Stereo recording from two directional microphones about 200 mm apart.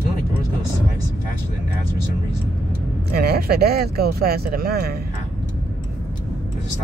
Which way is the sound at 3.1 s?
55° right (ahead or behind).